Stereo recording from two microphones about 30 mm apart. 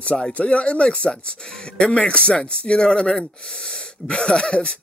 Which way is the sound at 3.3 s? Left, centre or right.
Left.